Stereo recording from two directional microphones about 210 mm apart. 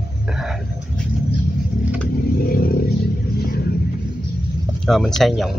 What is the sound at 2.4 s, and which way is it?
Vehicle, 45° left (ahead or behind).